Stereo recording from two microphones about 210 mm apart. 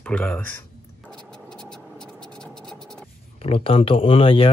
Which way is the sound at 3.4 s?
25° left (ahead or behind).